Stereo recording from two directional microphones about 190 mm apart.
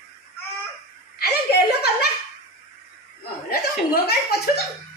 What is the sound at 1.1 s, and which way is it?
Speech, 55° left (ahead or behind).